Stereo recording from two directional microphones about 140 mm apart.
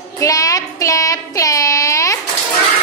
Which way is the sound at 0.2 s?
25° left (ahead or behind).